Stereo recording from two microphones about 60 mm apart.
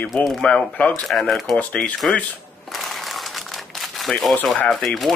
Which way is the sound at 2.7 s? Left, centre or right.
Centre.